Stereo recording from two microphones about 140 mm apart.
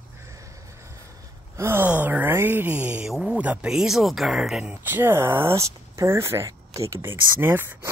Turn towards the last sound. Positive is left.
turn(degrees=-15)  # may be behind; listen again after turning